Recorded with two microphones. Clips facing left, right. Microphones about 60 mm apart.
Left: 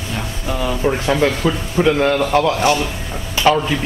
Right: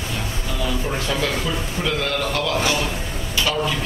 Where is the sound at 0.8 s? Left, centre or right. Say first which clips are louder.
Left 7 dB; left.